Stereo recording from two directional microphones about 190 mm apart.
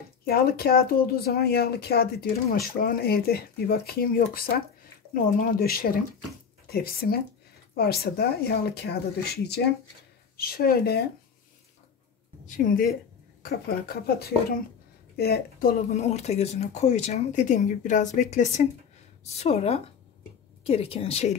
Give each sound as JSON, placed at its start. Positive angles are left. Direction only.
{"t": 0.2, "sound": "speech", "side_deg": 55}
{"t": 12.4, "sound": "speech", "side_deg": 45}
{"t": 14.0, "sound": "speech", "side_deg": 55}
{"t": 15.9, "sound": "speech", "side_deg": 35}